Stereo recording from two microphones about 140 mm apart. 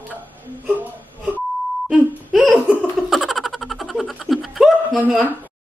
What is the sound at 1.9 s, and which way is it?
Laughter, centre (ahead or behind).